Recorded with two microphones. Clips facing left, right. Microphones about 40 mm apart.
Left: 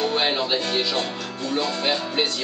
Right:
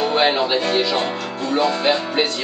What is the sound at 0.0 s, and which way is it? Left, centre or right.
Speech, centre.